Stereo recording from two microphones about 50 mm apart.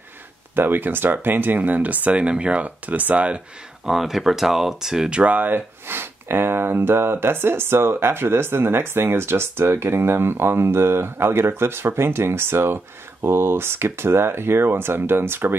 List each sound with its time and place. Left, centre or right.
0.6 s speech: right
3.8 s speech: centre
5.1 s speech: right